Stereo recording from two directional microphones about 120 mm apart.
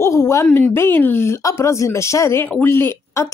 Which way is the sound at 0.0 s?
25° left (ahead or behind).